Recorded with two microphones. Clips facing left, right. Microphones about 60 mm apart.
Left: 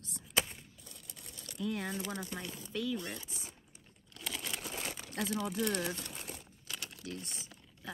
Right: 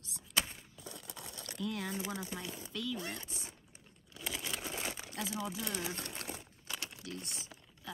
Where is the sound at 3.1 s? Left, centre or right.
Right.